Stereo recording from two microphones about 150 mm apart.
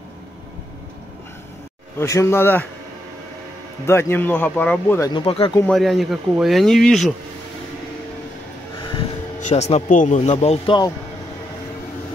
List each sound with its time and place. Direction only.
2.0 s speech: 20° left (ahead or behind)
3.8 s speech: 15° left (ahead or behind)
5.1 s speech: 40° left (ahead or behind)
5.7 s speech: centre (ahead or behind)
9.4 s speech: 50° left (ahead or behind)